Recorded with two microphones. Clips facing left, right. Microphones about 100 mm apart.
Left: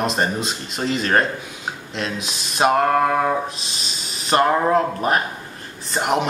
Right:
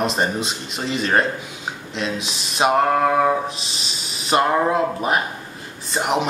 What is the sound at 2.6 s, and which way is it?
Speech, 10° right (ahead or behind).